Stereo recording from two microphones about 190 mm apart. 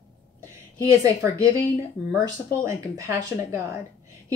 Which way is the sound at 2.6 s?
15° right (ahead or behind).